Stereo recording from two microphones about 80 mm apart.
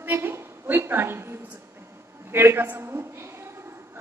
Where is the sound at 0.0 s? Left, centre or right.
Right.